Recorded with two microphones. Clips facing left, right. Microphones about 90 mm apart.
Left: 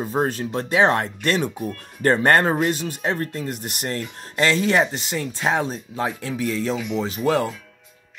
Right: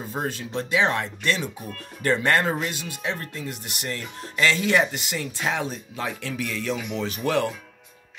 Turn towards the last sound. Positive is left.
turn(degrees=25)  # may be behind; listen again after turning